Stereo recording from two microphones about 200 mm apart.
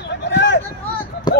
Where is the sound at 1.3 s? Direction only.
20° left (ahead or behind).